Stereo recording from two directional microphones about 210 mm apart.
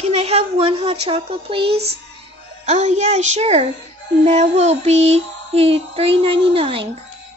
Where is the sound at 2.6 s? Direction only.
35° right (ahead or behind).